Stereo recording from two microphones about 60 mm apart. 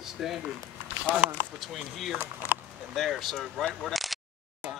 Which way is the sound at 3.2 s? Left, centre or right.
Centre.